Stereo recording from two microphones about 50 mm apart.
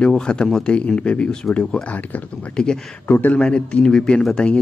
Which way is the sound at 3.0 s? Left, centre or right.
Left.